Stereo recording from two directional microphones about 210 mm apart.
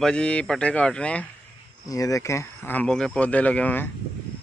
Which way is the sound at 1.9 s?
15° left (ahead or behind).